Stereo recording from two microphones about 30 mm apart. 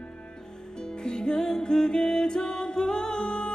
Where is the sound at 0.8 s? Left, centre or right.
Left.